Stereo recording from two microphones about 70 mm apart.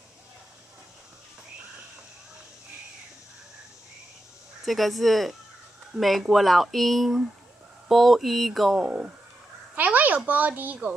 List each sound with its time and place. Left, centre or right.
4.6 s speech: centre
8.7 s speech: centre
9.8 s speech: right